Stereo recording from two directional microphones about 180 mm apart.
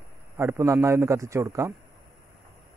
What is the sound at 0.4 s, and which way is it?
Speech, 15° right (ahead or behind).